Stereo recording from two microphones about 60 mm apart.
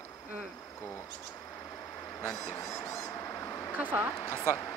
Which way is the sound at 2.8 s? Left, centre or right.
Left.